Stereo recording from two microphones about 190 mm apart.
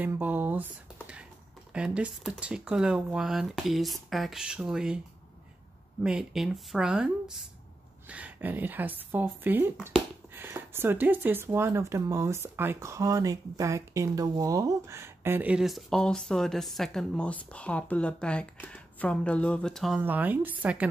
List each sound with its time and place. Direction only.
0.0 s speech: 10° right (ahead or behind)
1.7 s speech: 5° right (ahead or behind)
6.0 s speech: 5° right (ahead or behind)
8.1 s speech: 10° right (ahead or behind)
20.0 s speech: 10° right (ahead or behind)